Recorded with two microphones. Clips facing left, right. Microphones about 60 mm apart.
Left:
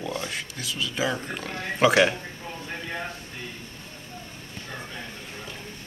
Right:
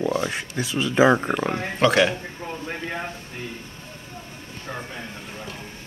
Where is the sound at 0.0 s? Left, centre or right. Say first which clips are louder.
Right 8 dB; right.